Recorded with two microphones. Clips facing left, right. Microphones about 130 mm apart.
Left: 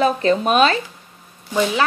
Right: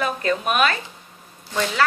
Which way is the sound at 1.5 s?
15° left (ahead or behind).